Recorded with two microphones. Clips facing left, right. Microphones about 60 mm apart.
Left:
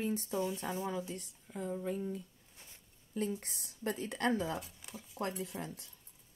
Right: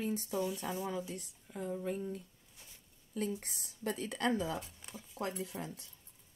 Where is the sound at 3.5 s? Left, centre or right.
Left.